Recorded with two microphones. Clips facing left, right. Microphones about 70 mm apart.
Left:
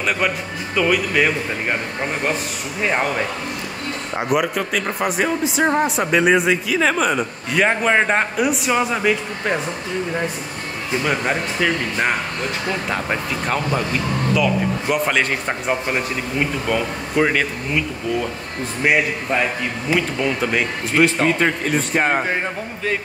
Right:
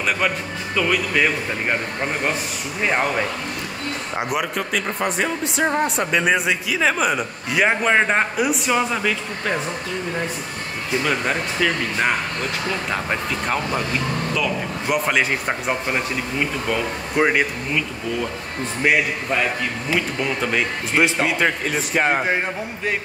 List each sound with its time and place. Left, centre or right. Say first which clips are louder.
0.7 s a man's voice: left 2 dB; centre
2.8 s a man's voice: even; centre
4.2 s a man's voice: left 5 dB; centre
11.1 s speech: left 3 dB; centre
12.9 s a man's voice: left 1 dB; centre
17.2 s speech: even; centre
19.9 s a man's voice: left 4 dB; centre